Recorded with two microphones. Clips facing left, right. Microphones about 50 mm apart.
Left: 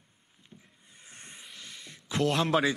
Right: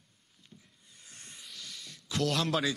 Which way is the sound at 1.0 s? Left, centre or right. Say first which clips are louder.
Left 2 dB; left.